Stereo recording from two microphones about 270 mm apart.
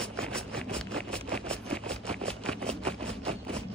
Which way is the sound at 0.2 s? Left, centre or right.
Centre.